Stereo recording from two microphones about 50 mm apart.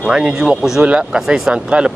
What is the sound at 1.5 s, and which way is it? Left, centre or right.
Speech, right.